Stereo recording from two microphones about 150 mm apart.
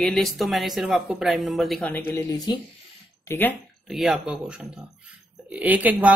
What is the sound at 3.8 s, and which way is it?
A woman's voice, centre (ahead or behind).